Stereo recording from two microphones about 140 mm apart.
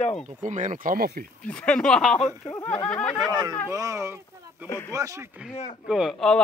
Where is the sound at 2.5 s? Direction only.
15° left (ahead or behind).